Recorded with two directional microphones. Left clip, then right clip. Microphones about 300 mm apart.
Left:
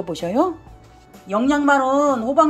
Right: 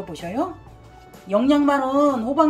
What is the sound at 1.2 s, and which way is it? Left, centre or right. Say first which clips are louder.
A man's voice: left 1 dB; centre.